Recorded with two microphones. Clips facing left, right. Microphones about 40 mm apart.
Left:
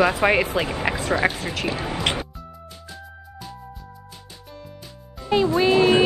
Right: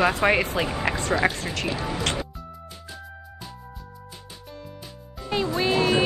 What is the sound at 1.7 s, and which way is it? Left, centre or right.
Speech, left.